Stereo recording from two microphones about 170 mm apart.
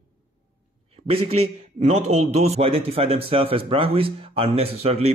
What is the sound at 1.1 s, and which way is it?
Speech, 35° right (ahead or behind).